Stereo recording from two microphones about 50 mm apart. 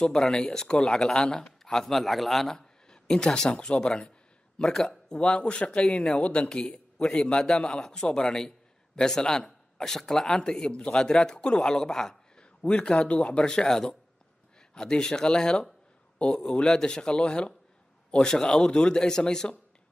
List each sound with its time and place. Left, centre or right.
0.0 s a man's voice: centre
5.1 s speech: centre
6.1 s speech: left
13.4 s speech: centre